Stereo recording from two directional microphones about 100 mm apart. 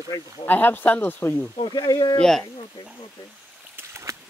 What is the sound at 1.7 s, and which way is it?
Speech, 45° left (ahead or behind).